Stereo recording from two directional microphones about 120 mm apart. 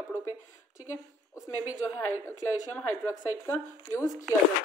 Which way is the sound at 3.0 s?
25° left (ahead or behind).